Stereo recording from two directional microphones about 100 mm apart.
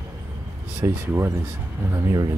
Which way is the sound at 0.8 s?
25° right (ahead or behind).